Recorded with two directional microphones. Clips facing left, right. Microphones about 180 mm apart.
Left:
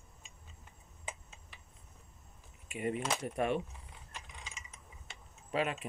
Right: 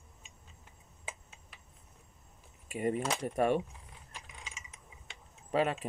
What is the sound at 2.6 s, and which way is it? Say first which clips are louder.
Speech: right 4 dB; 40° right (ahead or behind).